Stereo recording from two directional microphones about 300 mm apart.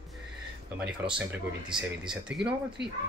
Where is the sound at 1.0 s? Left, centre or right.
Right.